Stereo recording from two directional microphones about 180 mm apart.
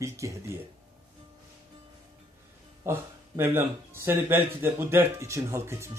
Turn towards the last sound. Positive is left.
turn(degrees=-15)  # may be behind; listen again after turning